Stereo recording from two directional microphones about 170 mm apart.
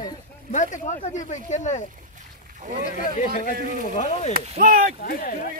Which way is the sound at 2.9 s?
50° left (ahead or behind).